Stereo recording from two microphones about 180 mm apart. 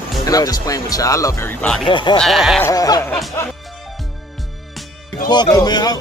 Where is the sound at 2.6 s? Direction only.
20° left (ahead or behind).